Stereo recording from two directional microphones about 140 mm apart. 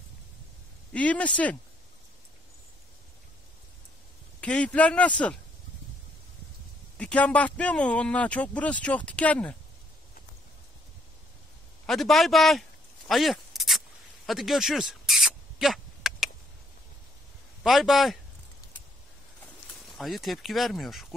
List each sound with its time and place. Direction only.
0.9 s speech: 10° left (ahead or behind)
4.4 s speech: 10° left (ahead or behind)
7.0 s speech: 10° left (ahead or behind)
11.8 s a sound: centre (ahead or behind)
17.6 s speech: centre (ahead or behind)
19.8 s speech: centre (ahead or behind)